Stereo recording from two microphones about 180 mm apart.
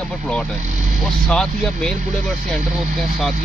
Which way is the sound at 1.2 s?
5° left (ahead or behind).